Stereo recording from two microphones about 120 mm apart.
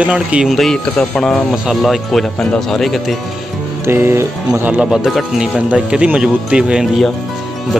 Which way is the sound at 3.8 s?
20° right (ahead or behind).